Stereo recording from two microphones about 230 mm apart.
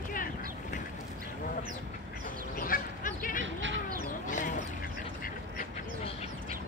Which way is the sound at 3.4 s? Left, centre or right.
Right.